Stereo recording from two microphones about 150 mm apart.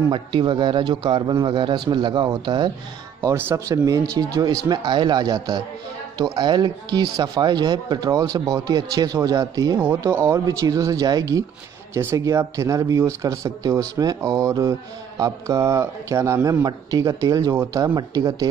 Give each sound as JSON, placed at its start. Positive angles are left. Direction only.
{"t": 0.1, "sound": "speech", "side_deg": -30}
{"t": 3.2, "sound": "speech", "side_deg": -15}